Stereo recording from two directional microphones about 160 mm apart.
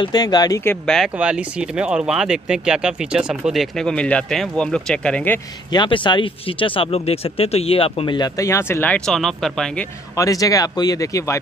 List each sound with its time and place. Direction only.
0.0 s speech: 25° left (ahead or behind)
0.8 s speech: centre (ahead or behind)
5.7 s speech: 30° left (ahead or behind); by 9.8 s 5° left (ahead or behind)
10.1 s speech: 20° left (ahead or behind)